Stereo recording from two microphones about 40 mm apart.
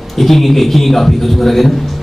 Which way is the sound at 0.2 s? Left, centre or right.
Centre.